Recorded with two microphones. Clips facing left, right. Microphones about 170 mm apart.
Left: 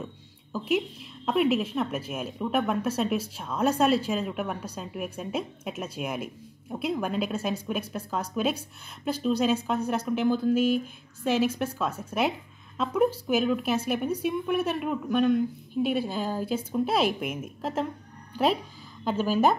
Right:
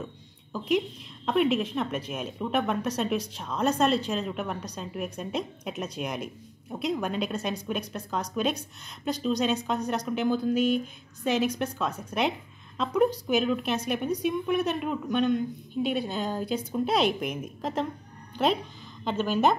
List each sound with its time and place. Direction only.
0.5 s a woman's voice: 5° left (ahead or behind)
18.3 s music: 5° left (ahead or behind)
19.0 s a woman's voice: 5° left (ahead or behind)